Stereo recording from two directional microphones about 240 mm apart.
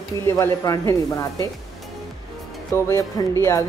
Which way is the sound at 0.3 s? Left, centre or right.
Centre.